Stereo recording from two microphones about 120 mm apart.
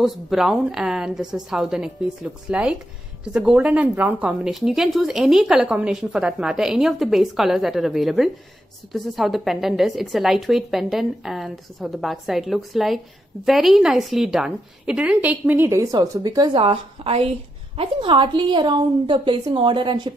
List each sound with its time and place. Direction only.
0.0 s a woman's voice: centre (ahead or behind); by 16.4 s 35° right (ahead or behind)
16.5 s a woman's voice: 50° right (ahead or behind)
17.7 s a woman's voice: 45° right (ahead or behind)